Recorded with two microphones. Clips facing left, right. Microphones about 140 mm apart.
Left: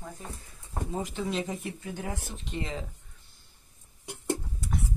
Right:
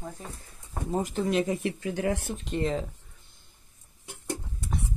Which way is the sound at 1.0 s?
50° right (ahead or behind).